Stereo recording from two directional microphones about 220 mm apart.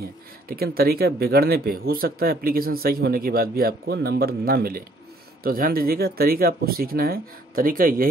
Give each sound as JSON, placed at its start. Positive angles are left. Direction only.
{"t": 0.5, "sound": "speech", "side_deg": -45}